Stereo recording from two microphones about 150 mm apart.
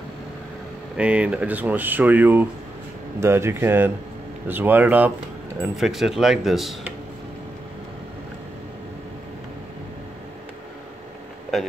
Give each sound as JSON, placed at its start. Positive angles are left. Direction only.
{"t": 0.9, "sound": "speech", "side_deg": -10}